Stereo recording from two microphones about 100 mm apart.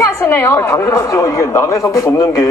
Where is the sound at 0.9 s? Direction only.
35° left (ahead or behind).